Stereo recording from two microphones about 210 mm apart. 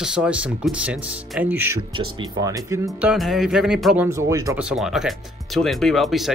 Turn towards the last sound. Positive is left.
turn(degrees=0)  # may be behind; listen again after turning